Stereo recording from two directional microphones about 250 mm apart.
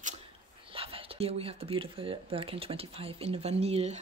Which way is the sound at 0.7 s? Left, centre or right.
Right.